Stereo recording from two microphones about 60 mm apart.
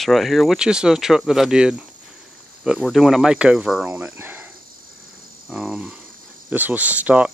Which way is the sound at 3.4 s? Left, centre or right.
Centre.